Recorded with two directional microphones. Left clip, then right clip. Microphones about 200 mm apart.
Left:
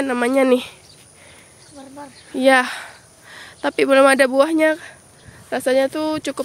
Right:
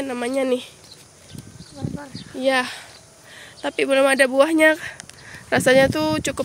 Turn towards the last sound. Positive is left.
turn(degrees=5)  # may be behind; listen again after turning